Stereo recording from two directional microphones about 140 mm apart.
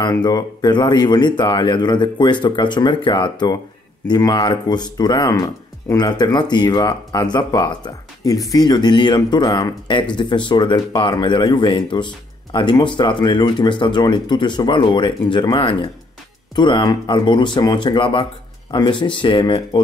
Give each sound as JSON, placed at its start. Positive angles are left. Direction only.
{"t": 0.0, "sound": "speech", "side_deg": 30}